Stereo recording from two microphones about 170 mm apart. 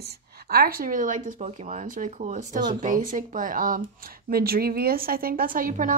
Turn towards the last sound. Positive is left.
turn(degrees=-50)  # may be behind; listen again after turning